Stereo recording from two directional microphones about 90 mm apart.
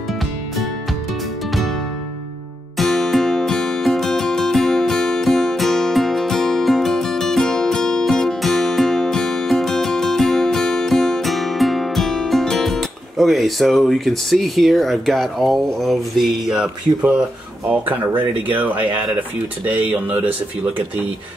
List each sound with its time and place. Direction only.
2.8 s music: 5° left (ahead or behind); by 18.9 s 20° right (ahead or behind)
19.6 s speech: 20° right (ahead or behind)